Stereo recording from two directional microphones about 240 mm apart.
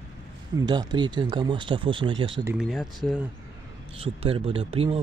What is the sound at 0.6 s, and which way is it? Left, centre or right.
Speech, centre.